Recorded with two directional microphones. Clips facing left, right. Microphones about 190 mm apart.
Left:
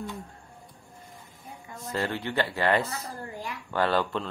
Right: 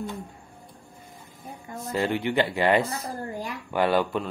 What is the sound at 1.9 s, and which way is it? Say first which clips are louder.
Speech: right 5 dB; 15° right (ahead or behind).